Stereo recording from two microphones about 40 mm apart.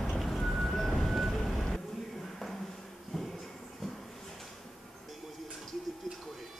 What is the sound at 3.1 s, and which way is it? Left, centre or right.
Music, centre.